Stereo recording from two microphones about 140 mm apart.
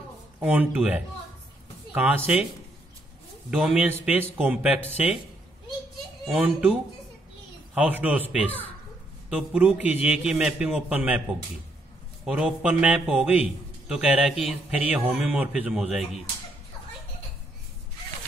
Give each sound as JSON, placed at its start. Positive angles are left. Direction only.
{"t": 0.4, "sound": "a man's voice", "side_deg": -10}
{"t": 3.4, "sound": "a man's voice", "side_deg": -5}
{"t": 6.2, "sound": "a man's voice", "side_deg": -5}
{"t": 9.5, "sound": "a man's voice", "side_deg": -10}
{"t": 12.3, "sound": "a man's voice", "side_deg": -5}